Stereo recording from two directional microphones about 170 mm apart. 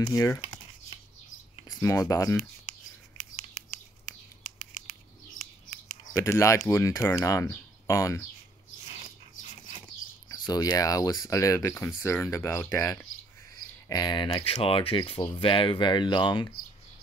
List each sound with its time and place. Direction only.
0.1 s speech: 20° left (ahead or behind)
1.8 s speech: 20° left (ahead or behind)
6.1 s speech: 15° left (ahead or behind)
10.2 s speech: 25° left (ahead or behind)